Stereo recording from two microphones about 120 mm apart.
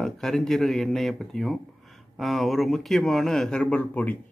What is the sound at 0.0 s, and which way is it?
Speech, 5° left (ahead or behind).